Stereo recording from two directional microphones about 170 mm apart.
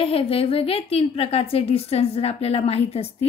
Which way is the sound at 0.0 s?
35° left (ahead or behind).